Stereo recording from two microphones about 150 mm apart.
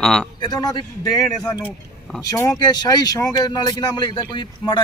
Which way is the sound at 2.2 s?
25° left (ahead or behind).